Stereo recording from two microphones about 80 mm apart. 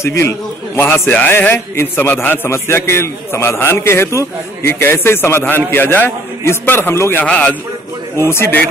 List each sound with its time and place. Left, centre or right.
0.0 s a man's voice: left
1.1 s a man's voice: centre
7.2 s a man's voice: centre
8.2 s a man's voice: left